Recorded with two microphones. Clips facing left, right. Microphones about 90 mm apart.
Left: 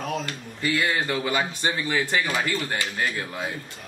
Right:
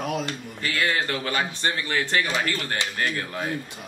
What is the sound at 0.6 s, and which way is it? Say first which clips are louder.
Speech: left 1 dB; 10° left (ahead or behind).